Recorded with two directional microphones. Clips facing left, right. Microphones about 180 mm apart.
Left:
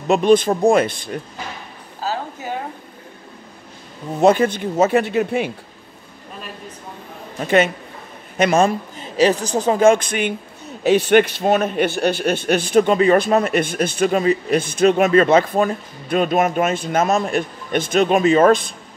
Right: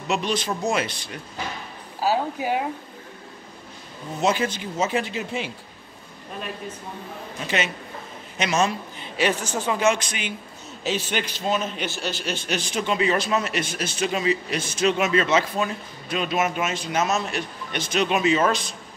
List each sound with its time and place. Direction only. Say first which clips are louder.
0.1 s a man's voice: left 11 dB; 50° left (ahead or behind)
2.0 s a sound: right 3 dB; 15° right (ahead or behind)
4.2 s speech: left 9 dB; 55° left (ahead or behind)
7.3 s a man's voice: left 11 dB; 55° left (ahead or behind)